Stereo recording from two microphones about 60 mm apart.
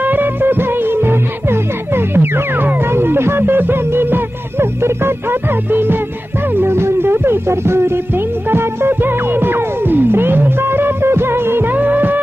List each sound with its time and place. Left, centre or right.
0.0 s music: right